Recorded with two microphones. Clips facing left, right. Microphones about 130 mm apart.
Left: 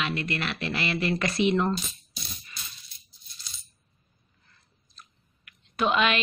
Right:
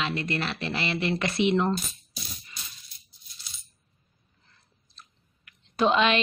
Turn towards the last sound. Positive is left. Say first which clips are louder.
# right 2 dB
turn(degrees=-25)  # may be behind; listen again after turning